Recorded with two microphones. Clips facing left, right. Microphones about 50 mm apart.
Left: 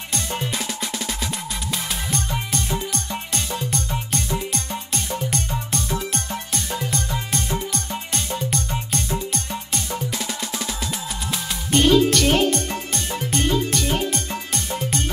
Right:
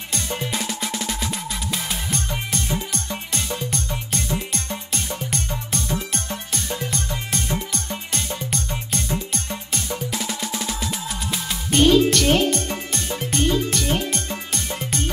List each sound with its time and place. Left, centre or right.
0.1 s music: centre